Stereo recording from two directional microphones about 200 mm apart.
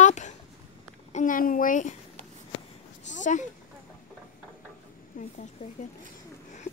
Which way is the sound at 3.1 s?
40° left (ahead or behind).